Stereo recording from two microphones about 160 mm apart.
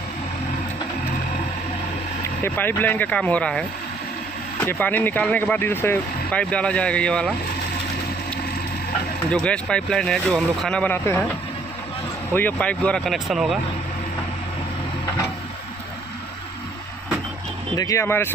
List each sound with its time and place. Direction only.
2.4 s speech: 15° left (ahead or behind)
9.3 s speech: 5° left (ahead or behind)
12.3 s speech: 10° left (ahead or behind)
17.7 s speech: 20° left (ahead or behind)